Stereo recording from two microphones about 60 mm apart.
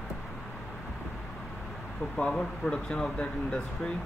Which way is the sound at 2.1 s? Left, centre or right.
Centre.